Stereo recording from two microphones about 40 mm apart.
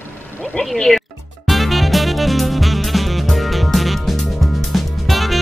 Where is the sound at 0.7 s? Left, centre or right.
Centre.